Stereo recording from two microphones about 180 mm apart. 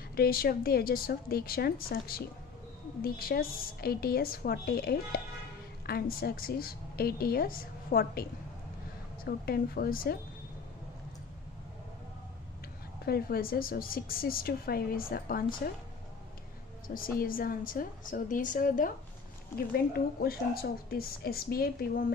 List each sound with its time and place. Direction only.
0.1 s a woman's voice: 55° left (ahead or behind)
13.0 s a woman's voice: 60° left (ahead or behind)
16.8 s a woman's voice: 50° left (ahead or behind)